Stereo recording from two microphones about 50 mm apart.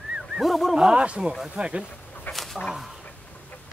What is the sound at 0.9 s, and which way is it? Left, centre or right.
Speech, right.